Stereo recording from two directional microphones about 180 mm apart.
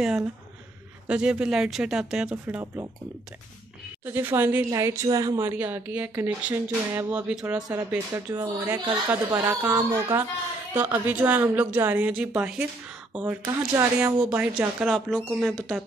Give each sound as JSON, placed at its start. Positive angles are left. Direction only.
{"t": 1.0, "sound": "speech", "side_deg": -5}
{"t": 4.0, "sound": "speech", "side_deg": -10}